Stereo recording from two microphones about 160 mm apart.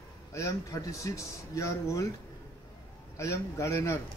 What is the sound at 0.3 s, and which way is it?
Speech, 20° left (ahead or behind).